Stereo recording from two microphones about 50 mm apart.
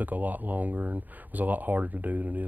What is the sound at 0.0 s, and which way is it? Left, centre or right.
A woman's voice, right.